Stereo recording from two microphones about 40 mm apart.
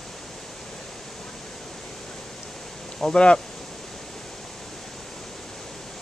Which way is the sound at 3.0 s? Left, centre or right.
Centre.